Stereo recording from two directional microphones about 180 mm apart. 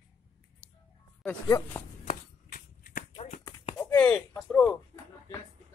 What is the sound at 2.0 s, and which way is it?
Shuffling cards, 50° left (ahead or behind).